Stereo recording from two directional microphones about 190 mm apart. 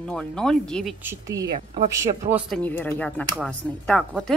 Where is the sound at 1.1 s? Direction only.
15° right (ahead or behind).